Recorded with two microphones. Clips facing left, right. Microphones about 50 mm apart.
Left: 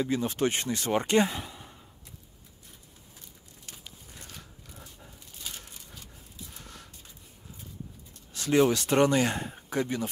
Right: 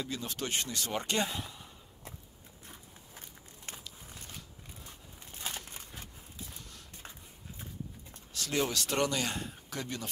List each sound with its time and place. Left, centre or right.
0.0 s speech: left
3.2 s walk: right
5.5 s a sound: right
8.3 s speech: left